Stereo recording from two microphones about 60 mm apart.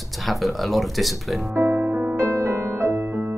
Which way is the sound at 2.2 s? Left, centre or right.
Right.